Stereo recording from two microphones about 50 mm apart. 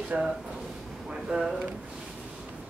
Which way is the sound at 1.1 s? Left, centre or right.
Centre.